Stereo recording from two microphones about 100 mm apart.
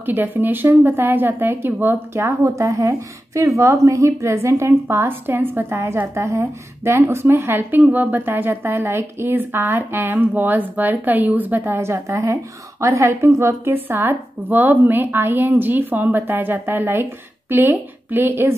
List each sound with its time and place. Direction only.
0.0 s speech: 20° right (ahead or behind)